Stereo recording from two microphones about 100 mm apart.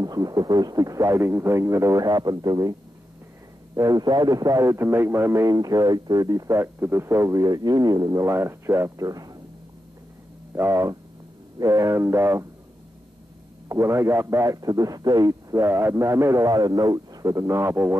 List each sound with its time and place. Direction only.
0.0 s a man's voice: 40° right (ahead or behind)
3.7 s a man's voice: 40° right (ahead or behind)
10.5 s a man's voice: 30° right (ahead or behind)
13.7 s a man's voice: 30° right (ahead or behind)